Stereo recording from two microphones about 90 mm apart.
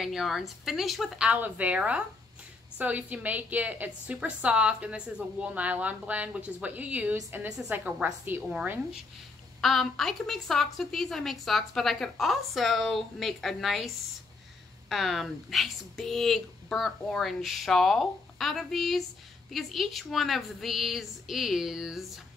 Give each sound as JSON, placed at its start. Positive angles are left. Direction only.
{"t": 0.0, "sound": "a woman's voice", "side_deg": -5}
{"t": 7.4, "sound": "a woman's voice", "side_deg": -5}
{"t": 7.7, "sound": "a woman's voice", "side_deg": -20}
{"t": 9.6, "sound": "a woman's voice", "side_deg": 0}